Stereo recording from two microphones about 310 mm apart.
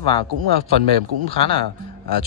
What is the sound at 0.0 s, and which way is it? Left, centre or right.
Speech, centre.